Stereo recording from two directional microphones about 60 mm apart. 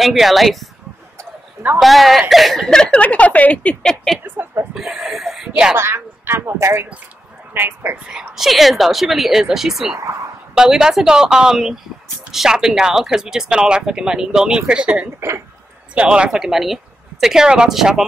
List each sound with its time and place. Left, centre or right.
0.0 s speech: centre
1.8 s speech: centre
3.0 s a woman's voice: left
4.2 s speech: right
4.7 s speech: centre
5.8 s speech: right
7.5 s speech: right
8.4 s speech: centre
15.1 s speech: right
15.9 s speech: centre